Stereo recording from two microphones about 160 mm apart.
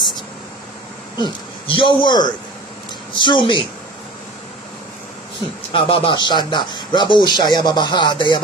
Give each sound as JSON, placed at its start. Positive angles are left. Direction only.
{"t": 1.1, "sound": "speech", "side_deg": 30}
{"t": 5.7, "sound": "speech", "side_deg": 30}